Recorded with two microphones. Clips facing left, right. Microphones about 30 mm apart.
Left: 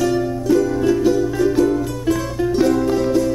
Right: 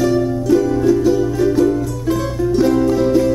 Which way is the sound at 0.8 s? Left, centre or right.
Centre.